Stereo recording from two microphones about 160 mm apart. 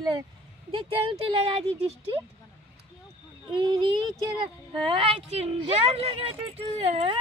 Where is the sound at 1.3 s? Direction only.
40° right (ahead or behind).